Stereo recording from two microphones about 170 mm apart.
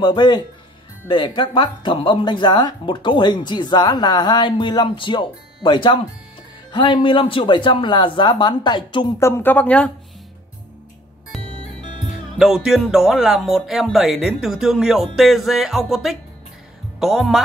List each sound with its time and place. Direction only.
0.0 s speech: 25° left (ahead or behind); by 9.8 s 10° left (ahead or behind)
11.3 s music: centre (ahead or behind)
12.4 s speech: 5° right (ahead or behind)